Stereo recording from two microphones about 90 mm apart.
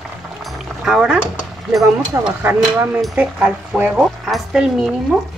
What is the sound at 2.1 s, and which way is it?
Speech, 35° right (ahead or behind).